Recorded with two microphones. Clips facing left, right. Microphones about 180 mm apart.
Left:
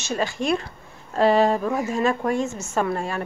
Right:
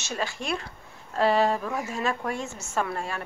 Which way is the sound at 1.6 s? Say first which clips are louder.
Left 7 dB; 35° left (ahead or behind).